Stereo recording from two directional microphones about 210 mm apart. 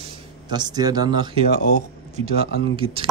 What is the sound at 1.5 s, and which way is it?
Speech, 45° left (ahead or behind).